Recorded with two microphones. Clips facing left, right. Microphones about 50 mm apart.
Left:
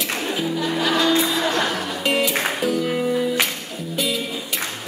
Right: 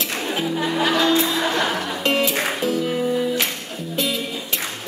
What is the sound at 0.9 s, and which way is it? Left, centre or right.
Music, centre.